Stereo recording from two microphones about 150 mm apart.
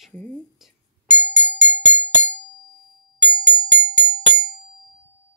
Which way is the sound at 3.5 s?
10° left (ahead or behind).